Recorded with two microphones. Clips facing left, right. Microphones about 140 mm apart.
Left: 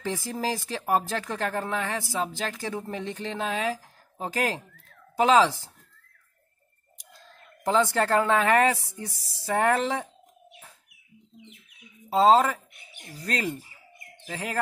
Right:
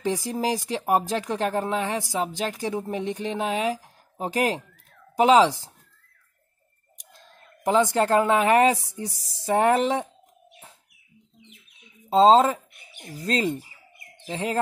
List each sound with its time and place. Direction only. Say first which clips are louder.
0.0 s speech: right 4 dB; 15° right (ahead or behind)
7.0 s speech: even; 20° right (ahead or behind)
11.7 s bird: right 4 dB; 25° right (ahead or behind)
12.9 s speech: right 5 dB; 20° right (ahead or behind)